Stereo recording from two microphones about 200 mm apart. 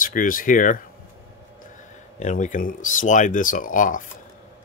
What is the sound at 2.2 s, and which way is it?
Speech, 40° left (ahead or behind).